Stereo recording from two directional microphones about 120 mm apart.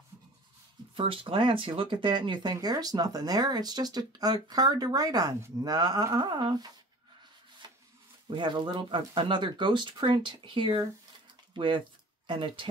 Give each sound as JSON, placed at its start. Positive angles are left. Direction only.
{"t": 0.9, "sound": "speech", "side_deg": -50}
{"t": 7.6, "sound": "rub", "side_deg": -35}
{"t": 8.3, "sound": "speech", "side_deg": -40}